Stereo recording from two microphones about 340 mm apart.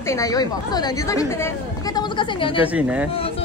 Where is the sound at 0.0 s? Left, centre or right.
Centre.